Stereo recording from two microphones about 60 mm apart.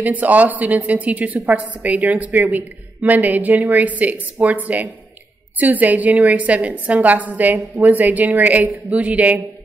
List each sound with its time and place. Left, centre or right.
0.0 s a woman's voice: right